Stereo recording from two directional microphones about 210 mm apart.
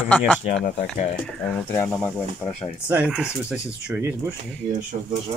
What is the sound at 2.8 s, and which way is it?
Speech, 5° right (ahead or behind).